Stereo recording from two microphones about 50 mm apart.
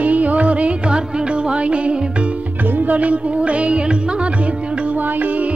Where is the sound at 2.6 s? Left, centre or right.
Right.